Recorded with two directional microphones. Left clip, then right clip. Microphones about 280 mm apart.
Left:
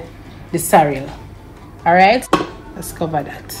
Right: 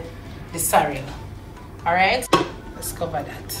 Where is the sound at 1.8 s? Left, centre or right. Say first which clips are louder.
Left 8 dB; left.